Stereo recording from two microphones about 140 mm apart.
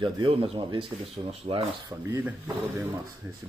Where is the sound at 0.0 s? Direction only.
35° right (ahead or behind).